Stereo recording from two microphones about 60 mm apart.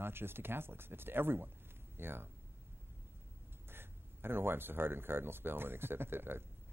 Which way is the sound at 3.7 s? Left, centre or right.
Right.